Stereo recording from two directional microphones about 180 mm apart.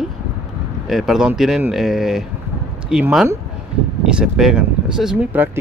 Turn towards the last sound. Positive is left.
turn(degrees=-5)  # may be behind; listen again after turning